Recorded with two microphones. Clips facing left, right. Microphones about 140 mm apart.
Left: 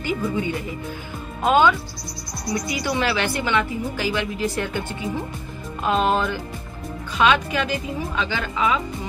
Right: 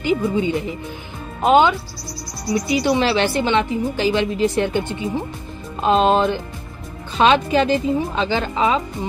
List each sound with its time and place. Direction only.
0.0 s a woman's voice: 20° right (ahead or behind)